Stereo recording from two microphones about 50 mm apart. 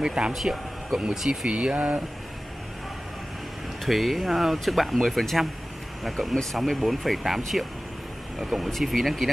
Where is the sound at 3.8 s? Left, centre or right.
Centre.